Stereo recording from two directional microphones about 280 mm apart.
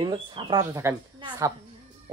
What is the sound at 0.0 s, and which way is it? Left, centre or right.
Speech, centre.